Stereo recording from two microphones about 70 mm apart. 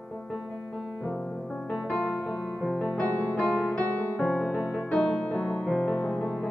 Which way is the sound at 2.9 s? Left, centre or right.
Left.